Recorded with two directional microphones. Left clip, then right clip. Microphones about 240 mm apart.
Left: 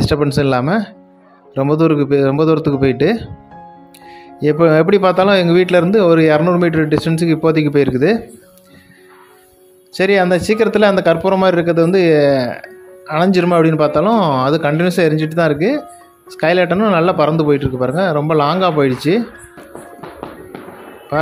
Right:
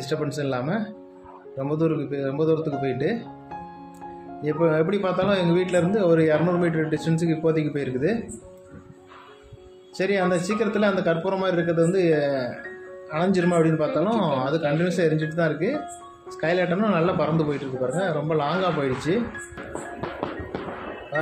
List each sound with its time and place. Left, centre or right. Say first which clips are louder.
0.0 s a man's voice: left 12 dB; left
4.4 s a man's voice: left 10 dB; left
9.9 s a man's voice: left 10 dB; left